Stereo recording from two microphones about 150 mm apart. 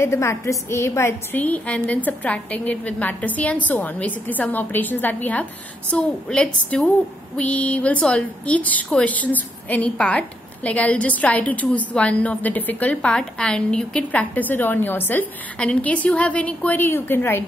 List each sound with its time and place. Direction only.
0.0 s a woman's voice: 20° left (ahead or behind)